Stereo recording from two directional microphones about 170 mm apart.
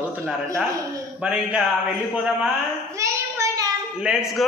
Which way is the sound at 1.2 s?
5° right (ahead or behind).